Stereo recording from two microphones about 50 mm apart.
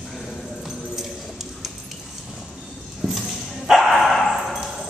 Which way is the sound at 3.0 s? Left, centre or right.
Centre.